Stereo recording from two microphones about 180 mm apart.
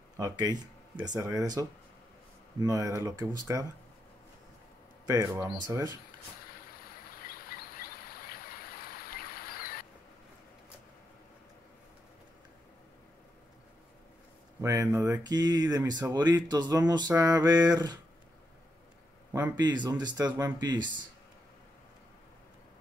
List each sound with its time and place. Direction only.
0.2 s speech: 20° right (ahead or behind)
5.0 s speech: 15° right (ahead or behind)
7.2 s a sound: 55° left (ahead or behind)
14.6 s speech: 15° right (ahead or behind)
19.5 s speech: 25° right (ahead or behind)